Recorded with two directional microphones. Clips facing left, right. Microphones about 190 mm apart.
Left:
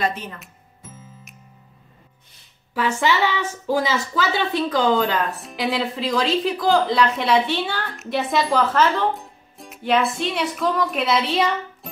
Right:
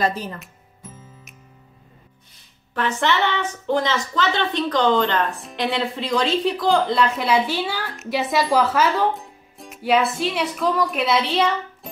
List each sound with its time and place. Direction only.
0.0 s speech: 35° right (ahead or behind)
2.7 s a woman's voice: 5° left (ahead or behind)